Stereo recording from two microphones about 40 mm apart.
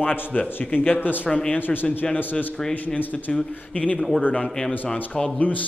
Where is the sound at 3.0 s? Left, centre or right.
Left.